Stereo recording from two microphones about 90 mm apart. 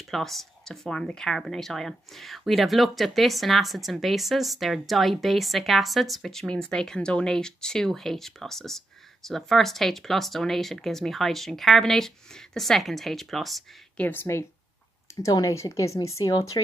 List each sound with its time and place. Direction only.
0.1 s speech: centre (ahead or behind)
13.9 s speech: 20° left (ahead or behind)
15.2 s speech: 40° left (ahead or behind)